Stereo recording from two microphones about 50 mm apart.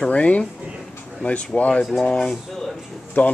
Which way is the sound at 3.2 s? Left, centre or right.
Left.